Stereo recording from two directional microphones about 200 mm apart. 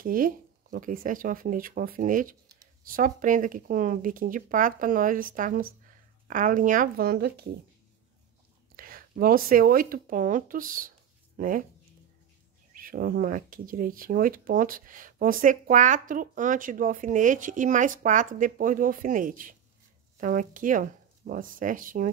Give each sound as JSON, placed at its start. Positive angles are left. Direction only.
{"t": 0.0, "sound": "speech", "side_deg": -45}
{"t": 8.7, "sound": "speech", "side_deg": -45}
{"t": 12.7, "sound": "speech", "side_deg": -45}